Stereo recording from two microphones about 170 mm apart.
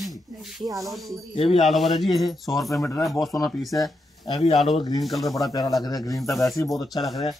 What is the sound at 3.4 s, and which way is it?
Speech, centre (ahead or behind).